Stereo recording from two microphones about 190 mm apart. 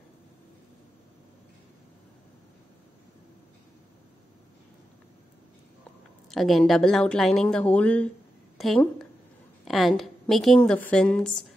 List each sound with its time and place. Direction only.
6.3 s a woman's voice: centre (ahead or behind)